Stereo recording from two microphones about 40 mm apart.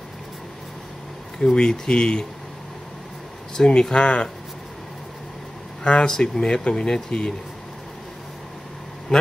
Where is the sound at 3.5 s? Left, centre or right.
Centre.